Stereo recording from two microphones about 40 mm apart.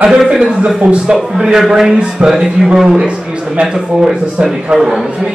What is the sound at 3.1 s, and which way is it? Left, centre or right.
Speech, right.